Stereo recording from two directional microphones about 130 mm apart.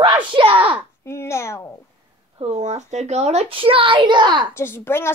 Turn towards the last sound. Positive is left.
turn(degrees=20)  # may be behind; listen again after turning